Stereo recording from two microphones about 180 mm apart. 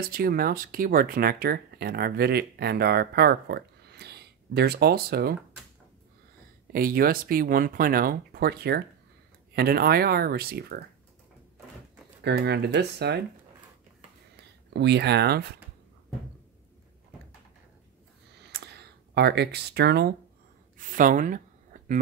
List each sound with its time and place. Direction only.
0.1 s speech: 55° right (ahead or behind)
6.7 s speech: 55° right (ahead or behind)
12.2 s speech: 70° right (ahead or behind)
14.7 s speech: 70° right (ahead or behind)
18.4 s a sound: 65° right (ahead or behind)
20.7 s speech: 50° right (ahead or behind)